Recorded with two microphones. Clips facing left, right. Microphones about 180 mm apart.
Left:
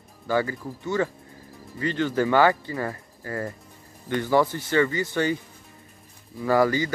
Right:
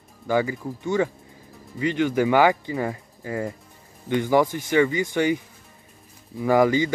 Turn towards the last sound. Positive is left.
turn(degrees=-20)  # may be behind; listen again after turning